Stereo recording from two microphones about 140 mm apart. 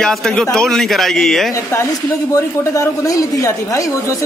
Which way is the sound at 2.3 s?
25° left (ahead or behind).